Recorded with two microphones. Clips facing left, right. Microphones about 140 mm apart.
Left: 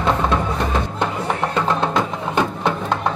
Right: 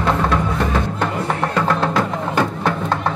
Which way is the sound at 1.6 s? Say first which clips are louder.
Right 2 dB; 20° left (ahead or behind).